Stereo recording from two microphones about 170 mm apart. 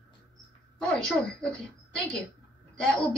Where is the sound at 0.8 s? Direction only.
5° left (ahead or behind).